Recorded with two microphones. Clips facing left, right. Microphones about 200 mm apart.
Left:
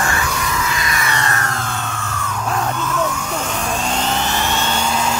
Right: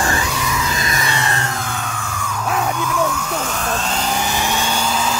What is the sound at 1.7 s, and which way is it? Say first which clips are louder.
Music: left 1 dB; centre (ahead or behind).